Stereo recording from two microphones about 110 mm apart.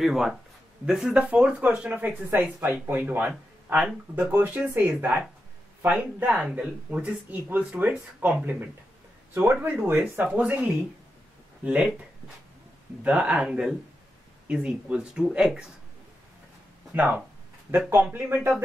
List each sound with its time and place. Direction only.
0.0 s speech: 5° right (ahead or behind)
16.9 s speech: 10° right (ahead or behind)